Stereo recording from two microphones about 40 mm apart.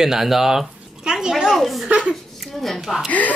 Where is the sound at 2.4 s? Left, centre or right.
Centre.